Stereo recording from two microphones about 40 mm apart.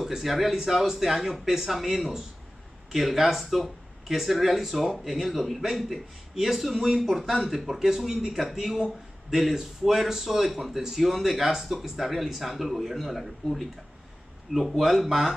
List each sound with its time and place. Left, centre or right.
0.0 s a man's voice: centre